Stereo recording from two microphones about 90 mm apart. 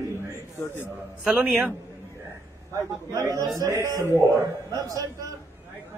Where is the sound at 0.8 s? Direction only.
5° right (ahead or behind).